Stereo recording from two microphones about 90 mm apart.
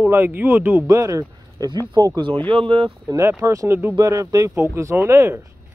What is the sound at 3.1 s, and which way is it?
Speech, 45° right (ahead or behind).